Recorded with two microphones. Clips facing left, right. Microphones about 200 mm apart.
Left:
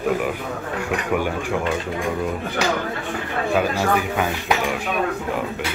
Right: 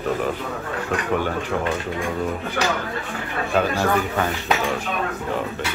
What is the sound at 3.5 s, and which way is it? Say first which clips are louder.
Speech: right 1 dB; 10° left (ahead or behind).